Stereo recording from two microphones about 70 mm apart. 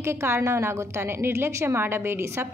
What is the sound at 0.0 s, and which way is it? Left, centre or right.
A woman's voice, right.